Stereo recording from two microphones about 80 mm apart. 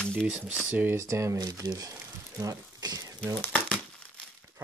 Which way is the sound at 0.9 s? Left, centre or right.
Right.